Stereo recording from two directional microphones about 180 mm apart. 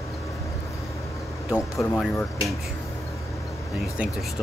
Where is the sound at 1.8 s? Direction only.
5° left (ahead or behind).